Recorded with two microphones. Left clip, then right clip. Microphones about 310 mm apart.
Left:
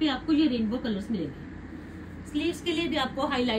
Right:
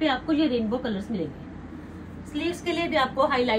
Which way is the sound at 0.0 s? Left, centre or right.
Centre.